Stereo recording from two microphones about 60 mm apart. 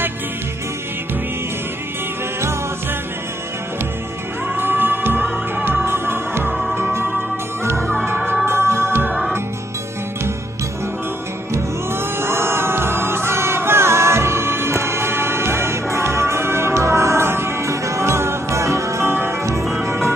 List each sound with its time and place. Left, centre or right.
4.6 s music: right
7.7 s music: centre
8.5 s music: right
11.5 s music: right
19.6 s music: centre
19.9 s music: right